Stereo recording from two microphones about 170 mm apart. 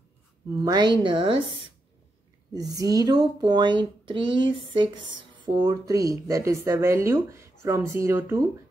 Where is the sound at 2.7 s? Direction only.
20° right (ahead or behind).